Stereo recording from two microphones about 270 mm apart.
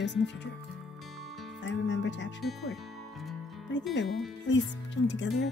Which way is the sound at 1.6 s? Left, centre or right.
Left.